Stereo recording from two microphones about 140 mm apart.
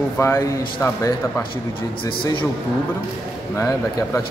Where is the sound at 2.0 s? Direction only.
35° left (ahead or behind).